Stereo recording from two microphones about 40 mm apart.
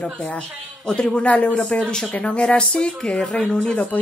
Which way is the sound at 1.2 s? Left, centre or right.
Left.